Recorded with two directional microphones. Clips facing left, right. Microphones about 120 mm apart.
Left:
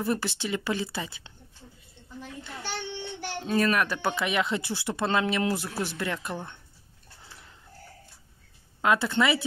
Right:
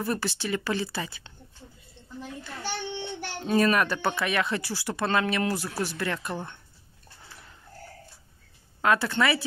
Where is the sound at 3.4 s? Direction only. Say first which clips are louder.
Right 2 dB; 5° right (ahead or behind).